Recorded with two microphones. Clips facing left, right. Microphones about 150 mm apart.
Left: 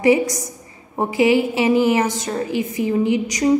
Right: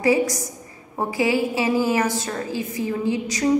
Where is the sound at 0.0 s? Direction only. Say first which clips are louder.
Left 3 dB; 20° left (ahead or behind).